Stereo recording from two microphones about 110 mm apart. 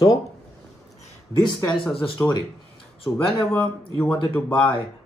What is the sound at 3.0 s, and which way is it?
Speech, 55° left (ahead or behind).